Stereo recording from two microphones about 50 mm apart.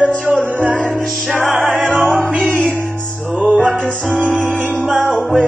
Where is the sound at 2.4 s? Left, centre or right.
Right.